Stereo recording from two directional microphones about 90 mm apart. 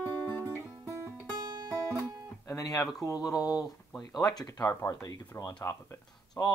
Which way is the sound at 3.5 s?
10° right (ahead or behind).